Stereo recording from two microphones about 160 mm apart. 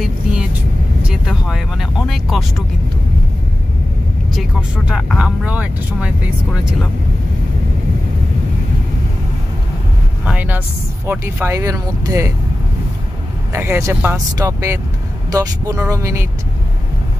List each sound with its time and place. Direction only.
0.0 s vehicle: 5° right (ahead or behind)
1.0 s speech: 5° right (ahead or behind)
4.4 s speech: 5° right (ahead or behind)
10.2 s speech: 10° right (ahead or behind)
13.5 s speech: 15° right (ahead or behind)